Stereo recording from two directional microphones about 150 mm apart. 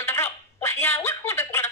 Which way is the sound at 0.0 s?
15° left (ahead or behind).